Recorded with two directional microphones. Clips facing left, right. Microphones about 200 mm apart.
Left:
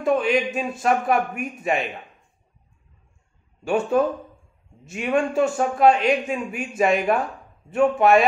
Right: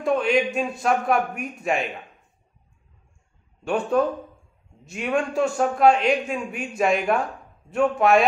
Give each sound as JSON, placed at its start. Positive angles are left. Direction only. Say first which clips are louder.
{"t": 0.0, "sound": "a man's voice", "louder": "left 1 dB", "side_deg": 0}
{"t": 3.6, "sound": "a man's voice", "louder": "left 1 dB", "side_deg": 5}